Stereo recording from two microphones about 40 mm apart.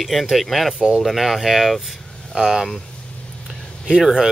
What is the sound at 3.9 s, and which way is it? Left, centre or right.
Speech, centre.